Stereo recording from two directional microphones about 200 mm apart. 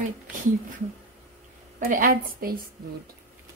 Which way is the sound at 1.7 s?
45° right (ahead or behind).